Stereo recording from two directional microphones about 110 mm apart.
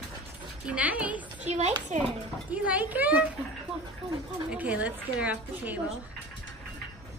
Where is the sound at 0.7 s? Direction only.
10° right (ahead or behind).